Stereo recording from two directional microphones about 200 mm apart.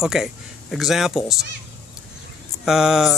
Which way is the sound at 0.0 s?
Centre (ahead or behind).